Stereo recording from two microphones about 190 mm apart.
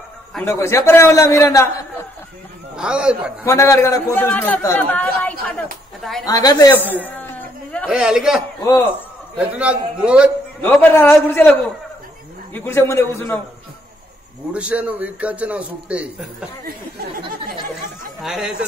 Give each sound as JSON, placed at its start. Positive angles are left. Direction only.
{"t": 0.3, "sound": "a man's voice", "side_deg": 10}
{"t": 2.7, "sound": "speech", "side_deg": -5}
{"t": 3.4, "sound": "a man's voice", "side_deg": 15}
{"t": 6.2, "sound": "a woman's voice", "side_deg": 20}
{"t": 7.1, "sound": "a sound", "side_deg": 10}
{"t": 7.8, "sound": "speech", "side_deg": -5}
{"t": 8.6, "sound": "a man's voice", "side_deg": 10}
{"t": 9.4, "sound": "a man's voice", "side_deg": -5}
{"t": 10.6, "sound": "a man's voice", "side_deg": 10}
{"t": 12.5, "sound": "a man's voice", "side_deg": 10}
{"t": 14.5, "sound": "a man's voice", "side_deg": -5}
{"t": 18.2, "sound": "speech", "side_deg": -5}